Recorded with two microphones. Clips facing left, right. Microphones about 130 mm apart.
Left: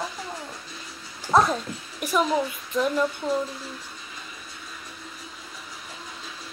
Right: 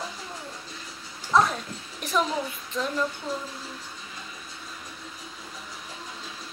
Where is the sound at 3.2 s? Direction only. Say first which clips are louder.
Left 6 dB; 65° left (ahead or behind).